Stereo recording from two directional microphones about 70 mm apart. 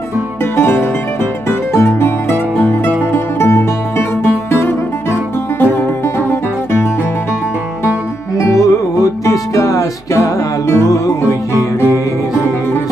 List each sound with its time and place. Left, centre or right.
0.6 s music: left
8.4 s music: left